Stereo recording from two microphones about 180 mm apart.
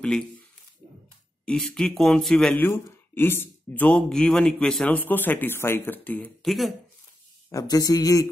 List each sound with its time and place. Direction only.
0.0 s speech: 5° left (ahead or behind)
1.4 s speech: 5° left (ahead or behind)
7.5 s speech: 20° left (ahead or behind)